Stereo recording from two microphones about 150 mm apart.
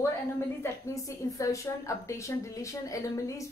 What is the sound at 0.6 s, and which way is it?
A woman's voice, 20° left (ahead or behind).